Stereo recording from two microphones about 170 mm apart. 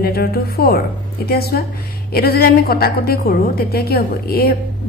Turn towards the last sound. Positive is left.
turn(degrees=65)  # may be behind; listen again after turning